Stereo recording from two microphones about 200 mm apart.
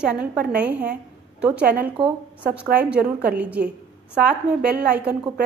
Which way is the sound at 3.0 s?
50° right (ahead or behind).